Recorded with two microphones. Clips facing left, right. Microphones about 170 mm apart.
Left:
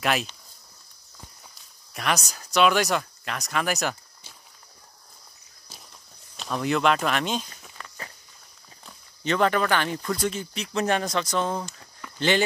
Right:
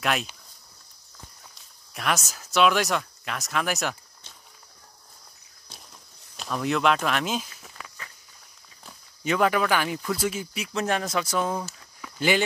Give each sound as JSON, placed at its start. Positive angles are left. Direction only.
{"t": 0.0, "sound": "speech", "side_deg": 0}
{"t": 2.0, "sound": "speech", "side_deg": 0}
{"t": 6.3, "sound": "speech", "side_deg": 0}